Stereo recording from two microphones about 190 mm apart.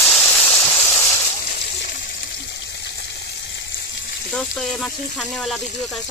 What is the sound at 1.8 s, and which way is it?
Water, 60° left (ahead or behind).